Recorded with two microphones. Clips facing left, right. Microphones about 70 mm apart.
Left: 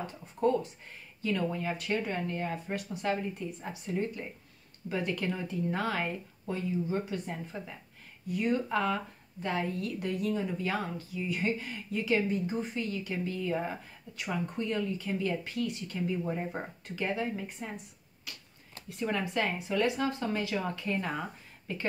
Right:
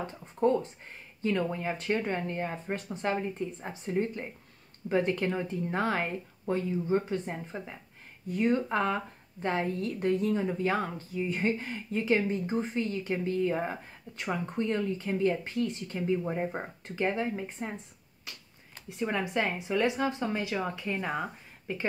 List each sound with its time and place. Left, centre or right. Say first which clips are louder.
0.0 s speech: right 2 dB; right